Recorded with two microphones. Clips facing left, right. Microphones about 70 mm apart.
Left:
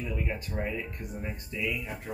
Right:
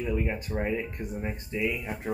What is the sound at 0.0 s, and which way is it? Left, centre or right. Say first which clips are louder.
Speech: right 5 dB; centre.